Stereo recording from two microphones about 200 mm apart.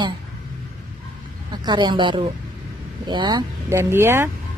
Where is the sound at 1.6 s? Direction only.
20° right (ahead or behind).